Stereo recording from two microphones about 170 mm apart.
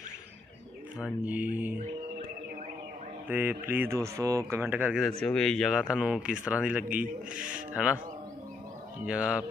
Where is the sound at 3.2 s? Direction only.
10° right (ahead or behind).